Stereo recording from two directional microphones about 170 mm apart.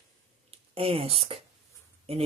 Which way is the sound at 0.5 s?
35° right (ahead or behind).